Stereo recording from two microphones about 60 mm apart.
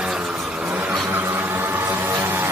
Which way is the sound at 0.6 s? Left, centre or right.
Right.